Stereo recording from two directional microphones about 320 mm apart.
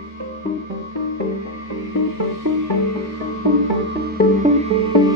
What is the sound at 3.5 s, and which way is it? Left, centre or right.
Music, right.